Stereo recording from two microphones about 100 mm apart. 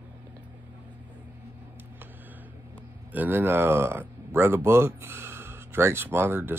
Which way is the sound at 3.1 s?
20° right (ahead or behind).